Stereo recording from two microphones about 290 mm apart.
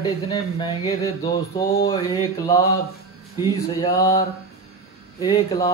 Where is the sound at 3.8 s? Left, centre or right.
Centre.